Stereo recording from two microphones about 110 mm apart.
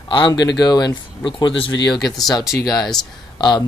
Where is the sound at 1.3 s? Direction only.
55° left (ahead or behind).